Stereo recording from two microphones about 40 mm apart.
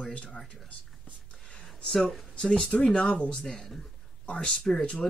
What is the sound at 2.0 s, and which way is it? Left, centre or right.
Speech, centre.